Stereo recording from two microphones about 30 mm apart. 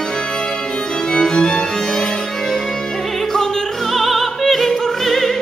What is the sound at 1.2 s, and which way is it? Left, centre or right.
Music, left.